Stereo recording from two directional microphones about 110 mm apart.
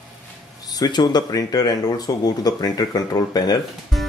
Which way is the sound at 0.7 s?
35° left (ahead or behind).